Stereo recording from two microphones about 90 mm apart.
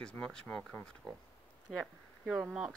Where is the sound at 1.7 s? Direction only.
5° right (ahead or behind).